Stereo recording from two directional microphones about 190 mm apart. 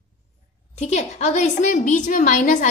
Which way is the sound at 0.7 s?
35° left (ahead or behind).